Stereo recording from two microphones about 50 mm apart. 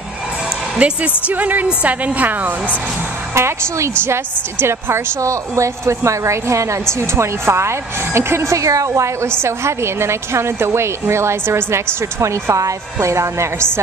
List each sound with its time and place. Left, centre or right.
0.7 s a woman's voice: right
3.3 s a woman's voice: right
9.4 s a woman's voice: right